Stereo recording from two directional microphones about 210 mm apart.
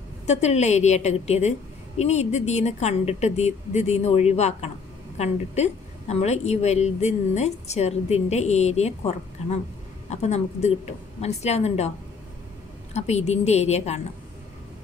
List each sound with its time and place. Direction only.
0.3 s a woman's voice: 30° left (ahead or behind)
12.9 s a woman's voice: 30° left (ahead or behind)